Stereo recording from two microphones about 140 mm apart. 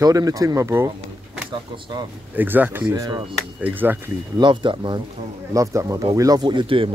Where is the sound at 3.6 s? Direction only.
15° right (ahead or behind).